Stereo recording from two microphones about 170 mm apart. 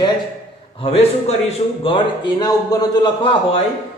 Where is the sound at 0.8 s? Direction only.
35° left (ahead or behind).